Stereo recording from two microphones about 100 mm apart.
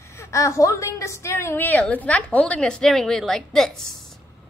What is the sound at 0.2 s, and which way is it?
A woman's voice, 30° left (ahead or behind).